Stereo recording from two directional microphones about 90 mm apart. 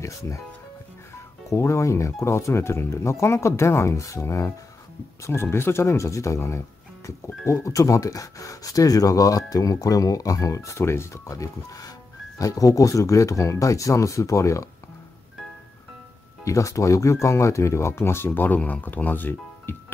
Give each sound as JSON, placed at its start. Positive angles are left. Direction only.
{"t": 0.0, "sound": "speech", "side_deg": 35}
{"t": 1.5, "sound": "speech", "side_deg": 35}
{"t": 16.4, "sound": "speech", "side_deg": 35}